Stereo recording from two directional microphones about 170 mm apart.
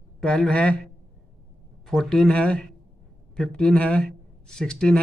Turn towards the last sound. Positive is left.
turn(degrees=5)  # may be behind; listen again after turning